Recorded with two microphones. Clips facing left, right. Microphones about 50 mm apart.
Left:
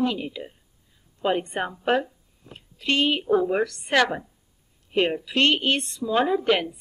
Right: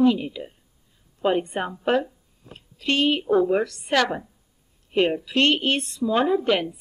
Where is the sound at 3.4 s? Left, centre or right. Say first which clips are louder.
Right 2 dB; centre.